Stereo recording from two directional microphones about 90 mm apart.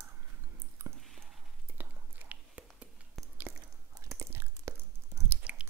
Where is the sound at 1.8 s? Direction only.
20° right (ahead or behind).